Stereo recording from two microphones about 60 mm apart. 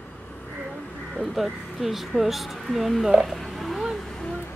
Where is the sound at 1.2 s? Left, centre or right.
Centre.